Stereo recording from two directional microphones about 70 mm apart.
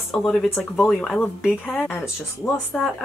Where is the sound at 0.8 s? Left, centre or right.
Centre.